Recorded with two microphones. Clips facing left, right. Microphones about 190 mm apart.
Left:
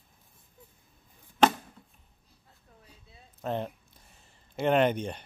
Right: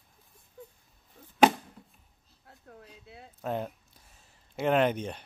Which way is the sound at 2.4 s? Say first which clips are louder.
Right 8 dB; 70° right (ahead or behind).